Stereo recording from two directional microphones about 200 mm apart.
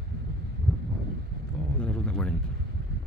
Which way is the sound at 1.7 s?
5° left (ahead or behind).